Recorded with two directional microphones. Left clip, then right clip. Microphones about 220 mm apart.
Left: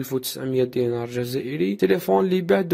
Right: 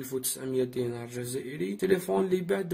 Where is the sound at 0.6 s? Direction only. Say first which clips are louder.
Left 9 dB; 40° left (ahead or behind).